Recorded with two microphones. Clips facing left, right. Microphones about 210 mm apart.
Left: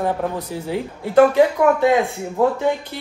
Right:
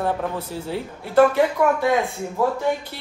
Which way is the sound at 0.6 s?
15° left (ahead or behind).